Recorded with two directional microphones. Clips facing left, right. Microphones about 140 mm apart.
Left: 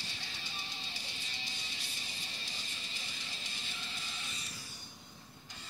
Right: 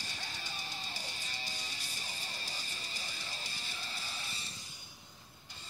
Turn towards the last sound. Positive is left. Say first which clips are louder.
# right 2 dB
turn(degrees=-35)  # may be behind; listen again after turning